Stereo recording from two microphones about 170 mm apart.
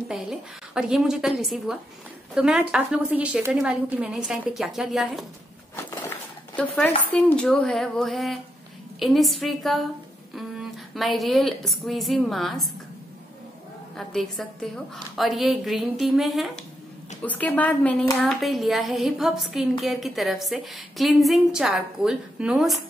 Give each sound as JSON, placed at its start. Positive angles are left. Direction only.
{"t": 0.1, "sound": "a woman's voice", "side_deg": -5}
{"t": 6.5, "sound": "a woman's voice", "side_deg": 10}
{"t": 13.9, "sound": "a woman's voice", "side_deg": 0}
{"t": 17.2, "sound": "a woman's voice", "side_deg": 10}